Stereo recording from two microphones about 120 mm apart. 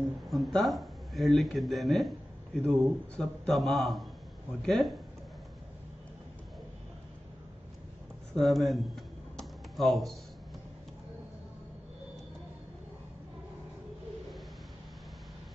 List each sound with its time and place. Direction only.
0.3 s speech: centre (ahead or behind)
8.4 s computer keyboard: centre (ahead or behind)